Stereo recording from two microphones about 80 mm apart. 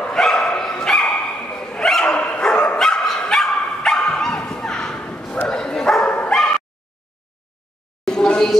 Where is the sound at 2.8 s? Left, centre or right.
Centre.